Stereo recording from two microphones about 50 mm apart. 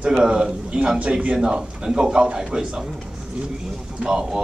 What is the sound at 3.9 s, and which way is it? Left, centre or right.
Speech, centre.